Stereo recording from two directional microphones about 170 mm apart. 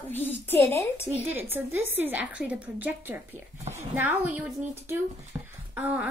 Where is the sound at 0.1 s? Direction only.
10° left (ahead or behind).